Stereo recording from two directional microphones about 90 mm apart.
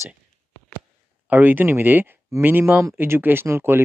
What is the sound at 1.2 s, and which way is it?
Speech, 20° right (ahead or behind).